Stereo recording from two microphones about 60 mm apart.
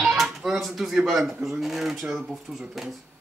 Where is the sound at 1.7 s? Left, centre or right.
Centre.